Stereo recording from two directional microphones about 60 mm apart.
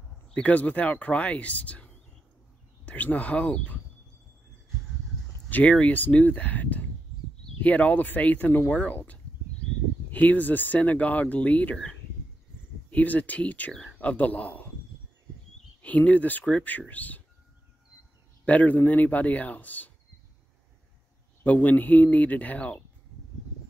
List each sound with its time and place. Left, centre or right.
0.3 s speech: left
5.5 s speech: left
11.7 s speech: centre
12.9 s a man's voice: left
15.8 s speech: left
18.4 s a man's voice: left
21.5 s speech: left